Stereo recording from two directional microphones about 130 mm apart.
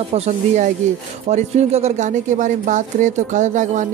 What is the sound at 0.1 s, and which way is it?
Speech, 55° right (ahead or behind).